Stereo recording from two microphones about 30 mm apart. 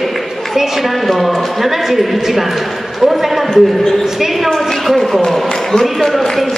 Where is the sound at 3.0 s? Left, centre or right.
Centre.